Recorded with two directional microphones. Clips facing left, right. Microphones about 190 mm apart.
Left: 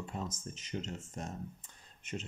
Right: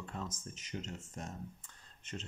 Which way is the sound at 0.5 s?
25° left (ahead or behind).